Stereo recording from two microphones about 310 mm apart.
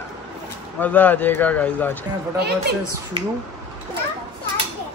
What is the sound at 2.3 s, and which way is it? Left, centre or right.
Speech, right.